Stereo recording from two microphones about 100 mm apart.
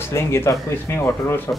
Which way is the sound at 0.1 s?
25° left (ahead or behind).